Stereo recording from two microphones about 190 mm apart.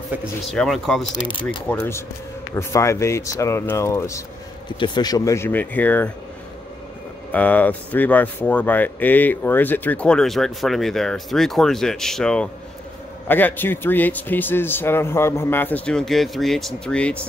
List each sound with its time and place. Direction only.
0.1 s speech: centre (ahead or behind)
1.1 s speech: 25° left (ahead or behind)
1.7 s speech: 15° left (ahead or behind)
7.3 s speech: 10° left (ahead or behind)